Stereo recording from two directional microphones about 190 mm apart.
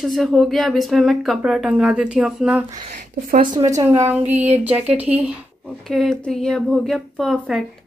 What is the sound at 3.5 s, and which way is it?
Speech, 15° right (ahead or behind).